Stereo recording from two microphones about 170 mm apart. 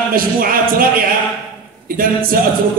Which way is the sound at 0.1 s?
55° right (ahead or behind).